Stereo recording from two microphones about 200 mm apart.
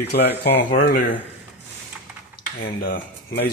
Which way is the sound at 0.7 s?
45° left (ahead or behind).